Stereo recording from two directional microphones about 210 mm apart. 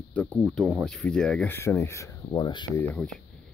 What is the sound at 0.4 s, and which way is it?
Speech, centre (ahead or behind).